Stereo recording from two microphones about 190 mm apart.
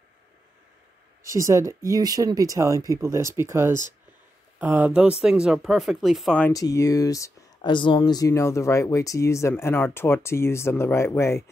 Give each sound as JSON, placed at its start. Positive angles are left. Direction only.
{"t": 1.2, "sound": "speech", "side_deg": -15}
{"t": 6.5, "sound": "speech", "side_deg": 15}